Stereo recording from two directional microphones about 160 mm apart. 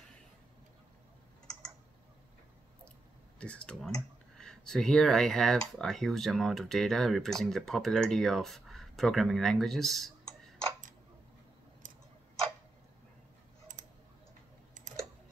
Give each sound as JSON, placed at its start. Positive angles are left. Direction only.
{"t": 3.3, "sound": "speech", "side_deg": 5}
{"t": 11.8, "sound": "tick-tock", "side_deg": -55}